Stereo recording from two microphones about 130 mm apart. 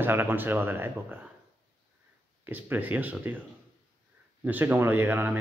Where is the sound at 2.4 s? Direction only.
15° right (ahead or behind).